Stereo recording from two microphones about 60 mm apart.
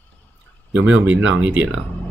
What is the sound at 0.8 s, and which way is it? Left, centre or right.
Speech, right.